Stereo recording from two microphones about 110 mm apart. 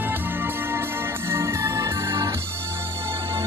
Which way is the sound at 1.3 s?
25° right (ahead or behind).